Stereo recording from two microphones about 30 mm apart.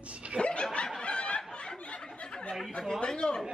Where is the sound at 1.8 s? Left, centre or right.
Left.